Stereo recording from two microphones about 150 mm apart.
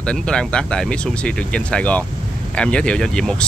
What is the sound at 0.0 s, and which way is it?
Speech, 5° left (ahead or behind).